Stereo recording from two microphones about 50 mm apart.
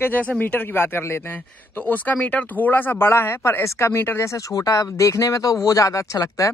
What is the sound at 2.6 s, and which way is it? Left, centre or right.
A man's voice, left.